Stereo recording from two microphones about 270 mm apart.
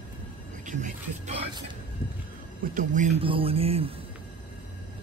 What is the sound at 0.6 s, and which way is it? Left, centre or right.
Music, right.